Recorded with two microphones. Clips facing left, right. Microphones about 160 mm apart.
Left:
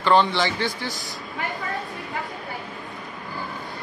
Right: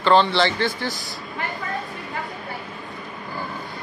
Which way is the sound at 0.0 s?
15° left (ahead or behind).